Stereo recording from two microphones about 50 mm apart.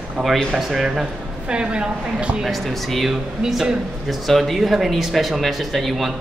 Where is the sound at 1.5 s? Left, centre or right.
Centre.